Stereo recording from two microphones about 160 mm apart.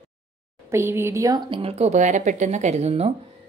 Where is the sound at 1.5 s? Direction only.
35° right (ahead or behind).